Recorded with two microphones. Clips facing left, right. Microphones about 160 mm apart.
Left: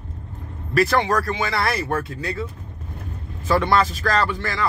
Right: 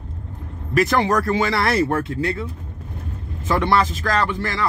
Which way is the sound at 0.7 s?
20° right (ahead or behind).